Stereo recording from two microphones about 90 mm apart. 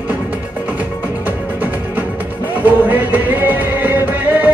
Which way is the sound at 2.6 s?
20° right (ahead or behind).